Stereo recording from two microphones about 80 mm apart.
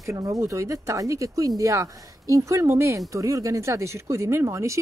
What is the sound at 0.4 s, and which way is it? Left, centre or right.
Speech, right.